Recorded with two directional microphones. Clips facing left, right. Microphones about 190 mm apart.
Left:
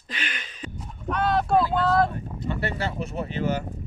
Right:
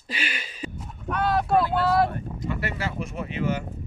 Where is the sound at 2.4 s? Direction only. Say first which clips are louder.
Left 3 dB; 30° left (ahead or behind).